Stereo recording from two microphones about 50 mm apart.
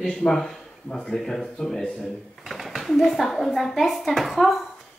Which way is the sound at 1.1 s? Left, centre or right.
Centre.